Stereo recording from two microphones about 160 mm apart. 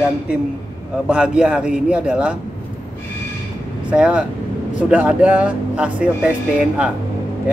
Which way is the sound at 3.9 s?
5° right (ahead or behind).